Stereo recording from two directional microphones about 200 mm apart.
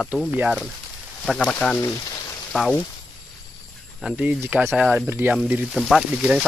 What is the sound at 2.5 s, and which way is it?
Speech, centre (ahead or behind).